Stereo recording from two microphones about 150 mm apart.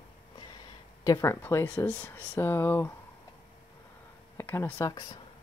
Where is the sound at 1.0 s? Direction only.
20° left (ahead or behind).